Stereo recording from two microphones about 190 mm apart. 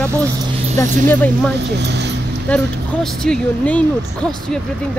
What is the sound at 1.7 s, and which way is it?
Speech, 60° right (ahead or behind).